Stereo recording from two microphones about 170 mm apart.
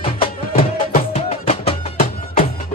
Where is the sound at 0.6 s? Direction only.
35° left (ahead or behind).